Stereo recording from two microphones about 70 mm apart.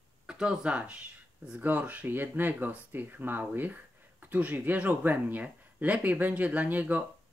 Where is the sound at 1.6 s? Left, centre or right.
Right.